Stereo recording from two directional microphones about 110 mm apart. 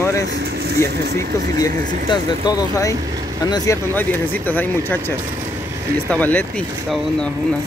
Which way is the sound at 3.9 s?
15° left (ahead or behind).